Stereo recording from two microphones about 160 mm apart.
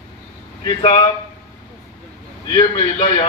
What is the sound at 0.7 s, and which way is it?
Speech, 35° left (ahead or behind).